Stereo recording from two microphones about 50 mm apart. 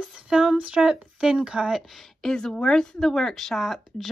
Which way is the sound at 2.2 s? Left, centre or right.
Centre.